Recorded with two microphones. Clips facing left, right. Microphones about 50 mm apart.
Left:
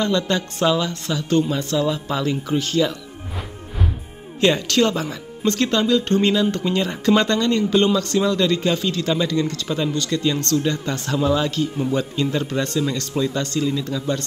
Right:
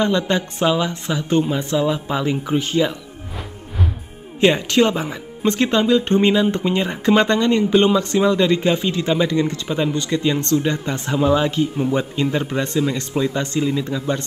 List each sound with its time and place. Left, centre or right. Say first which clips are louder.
0.0 s speech: right 2 dB; centre
4.4 s speech: right 2 dB; right